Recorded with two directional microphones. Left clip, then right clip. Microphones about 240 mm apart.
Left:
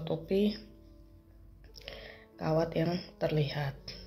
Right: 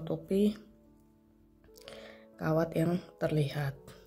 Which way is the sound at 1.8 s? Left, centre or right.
Right.